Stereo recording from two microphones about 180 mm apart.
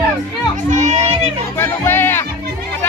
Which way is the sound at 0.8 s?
40° right (ahead or behind).